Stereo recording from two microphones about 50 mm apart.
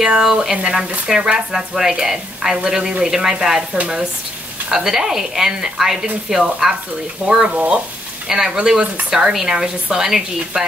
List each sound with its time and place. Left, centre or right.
0.0 s speech: centre
4.6 s speech: centre
7.2 s speech: right
8.3 s speech: centre